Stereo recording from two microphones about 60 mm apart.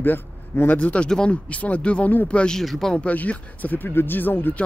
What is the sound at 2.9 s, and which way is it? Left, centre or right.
Speech, left.